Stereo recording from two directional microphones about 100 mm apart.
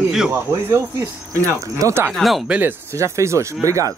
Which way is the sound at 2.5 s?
15° right (ahead or behind).